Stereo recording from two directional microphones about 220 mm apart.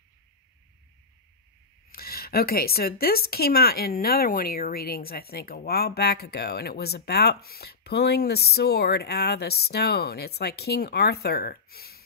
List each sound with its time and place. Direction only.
1.9 s speech: 45° left (ahead or behind)